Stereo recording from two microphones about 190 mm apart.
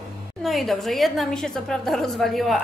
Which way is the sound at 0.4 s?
Centre (ahead or behind).